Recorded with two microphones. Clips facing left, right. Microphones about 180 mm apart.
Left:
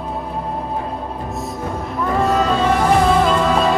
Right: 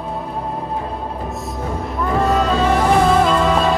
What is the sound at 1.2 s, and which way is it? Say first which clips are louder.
Music: even; centre (ahead or behind).